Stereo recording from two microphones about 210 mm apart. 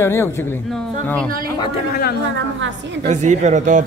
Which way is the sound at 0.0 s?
10° left (ahead or behind).